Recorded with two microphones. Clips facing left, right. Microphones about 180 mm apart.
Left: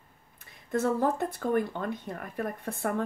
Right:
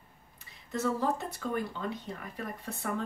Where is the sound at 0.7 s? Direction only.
55° left (ahead or behind).